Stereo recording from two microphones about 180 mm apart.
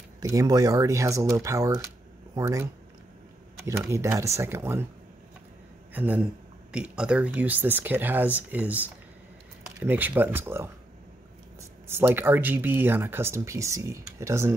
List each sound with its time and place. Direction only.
0.2 s speech: 20° right (ahead or behind)
3.5 s a sound: 15° right (ahead or behind)
3.9 s speech: 15° right (ahead or behind)
5.9 s speech: 10° right (ahead or behind)
11.9 s speech: 10° right (ahead or behind)